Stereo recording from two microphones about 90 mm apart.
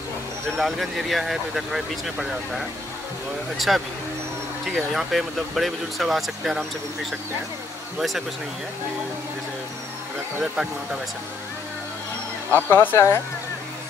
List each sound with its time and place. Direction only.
0.6 s speech: centre (ahead or behind)
10.4 s speech: 5° right (ahead or behind)
12.5 s speech: 20° left (ahead or behind)